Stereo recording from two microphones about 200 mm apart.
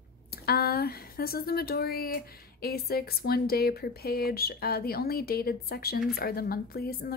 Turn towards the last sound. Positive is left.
turn(degrees=50)  # may be behind; listen again after turning